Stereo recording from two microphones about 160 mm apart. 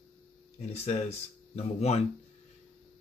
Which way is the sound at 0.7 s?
40° left (ahead or behind).